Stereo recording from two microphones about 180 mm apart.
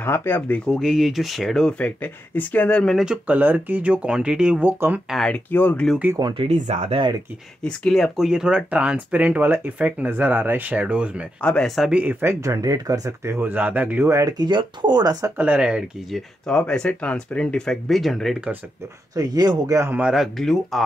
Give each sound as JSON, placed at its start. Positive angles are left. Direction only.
{"t": 0.0, "sound": "speech", "side_deg": 10}
{"t": 0.7, "sound": "speech", "side_deg": 0}
{"t": 5.1, "sound": "speech", "side_deg": 5}
{"t": 6.1, "sound": "speech", "side_deg": -25}
{"t": 7.6, "sound": "speech", "side_deg": 5}
{"t": 11.4, "sound": "speech", "side_deg": 5}
{"t": 15.3, "sound": "speech", "side_deg": -5}
{"t": 19.1, "sound": "speech", "side_deg": -20}